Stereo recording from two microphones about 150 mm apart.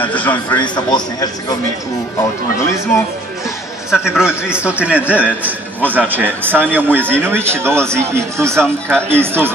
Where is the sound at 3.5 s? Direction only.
5° right (ahead or behind).